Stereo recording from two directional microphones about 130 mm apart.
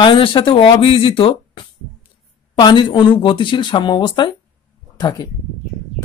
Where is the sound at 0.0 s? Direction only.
40° left (ahead or behind).